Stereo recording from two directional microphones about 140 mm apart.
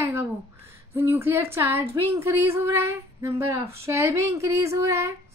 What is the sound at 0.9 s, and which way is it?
A woman's voice, 15° right (ahead or behind).